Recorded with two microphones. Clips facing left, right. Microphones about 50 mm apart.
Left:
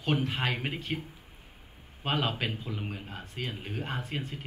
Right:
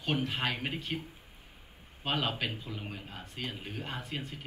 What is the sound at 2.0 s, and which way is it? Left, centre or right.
Speech, left.